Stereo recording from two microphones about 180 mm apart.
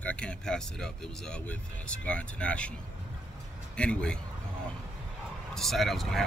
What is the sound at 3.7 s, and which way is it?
Speech, 5° left (ahead or behind).